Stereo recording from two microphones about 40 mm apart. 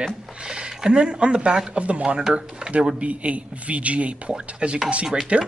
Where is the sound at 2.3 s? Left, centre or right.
Right.